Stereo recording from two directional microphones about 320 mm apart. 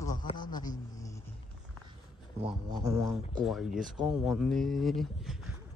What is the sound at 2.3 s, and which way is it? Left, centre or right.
Speech, centre.